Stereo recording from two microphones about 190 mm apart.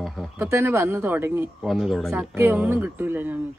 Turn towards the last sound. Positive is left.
turn(degrees=-10)  # may be behind; listen again after turning